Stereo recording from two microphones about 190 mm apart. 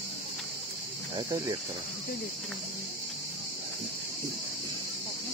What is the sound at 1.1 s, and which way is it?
Cricket, 20° right (ahead or behind).